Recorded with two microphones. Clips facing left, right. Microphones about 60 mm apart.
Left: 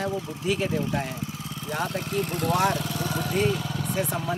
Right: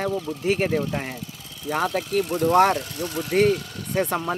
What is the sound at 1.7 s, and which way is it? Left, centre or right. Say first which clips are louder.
Speech: right 6 dB; right.